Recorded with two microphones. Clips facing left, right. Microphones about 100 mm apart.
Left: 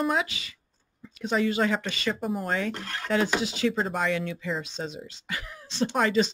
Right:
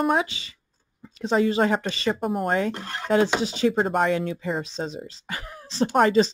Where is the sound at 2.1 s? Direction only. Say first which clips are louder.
Right 5 dB; 55° right (ahead or behind).